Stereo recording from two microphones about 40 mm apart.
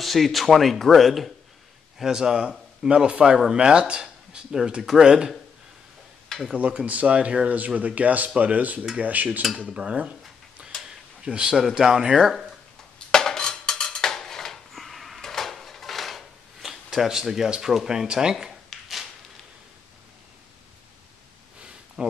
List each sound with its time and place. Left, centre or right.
0.0 s speech: centre
2.0 s speech: centre
2.9 s speech: right
4.5 s speech: centre
6.5 s speech: right
9.0 s dishes: right
9.6 s speech: right
10.6 s tick-tock: right
11.5 s speech: centre
13.1 s music: centre
15.2 s drawer open or close: centre
17.1 s speech: centre
18.7 s a sound: centre
21.5 s a sound: right